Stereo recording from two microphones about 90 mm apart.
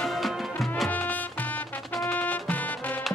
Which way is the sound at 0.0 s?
Centre (ahead or behind).